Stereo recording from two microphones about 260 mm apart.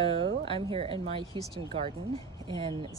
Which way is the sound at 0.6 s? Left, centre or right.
Right.